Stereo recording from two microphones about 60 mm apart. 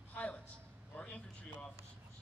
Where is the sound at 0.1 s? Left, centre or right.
Left.